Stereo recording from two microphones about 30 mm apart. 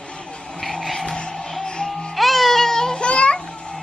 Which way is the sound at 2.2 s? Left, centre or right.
Centre.